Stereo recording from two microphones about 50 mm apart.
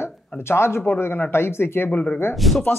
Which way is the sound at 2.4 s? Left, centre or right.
Centre.